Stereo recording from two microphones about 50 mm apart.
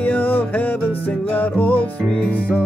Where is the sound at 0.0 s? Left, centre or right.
Left.